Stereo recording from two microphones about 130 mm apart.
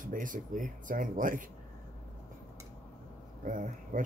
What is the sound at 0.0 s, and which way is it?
Speech, 90° right.